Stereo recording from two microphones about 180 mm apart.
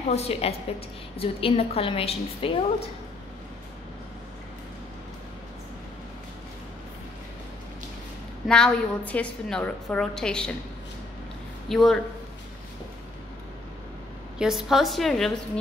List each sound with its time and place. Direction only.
0.1 s a woman's voice: 35° left (ahead or behind)
8.5 s a woman's voice: 5° left (ahead or behind)
11.7 s a woman's voice: centre (ahead or behind)
14.4 s a woman's voice: centre (ahead or behind)